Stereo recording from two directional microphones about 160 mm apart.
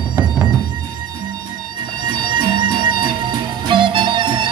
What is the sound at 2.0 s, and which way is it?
Music, 30° right (ahead or behind).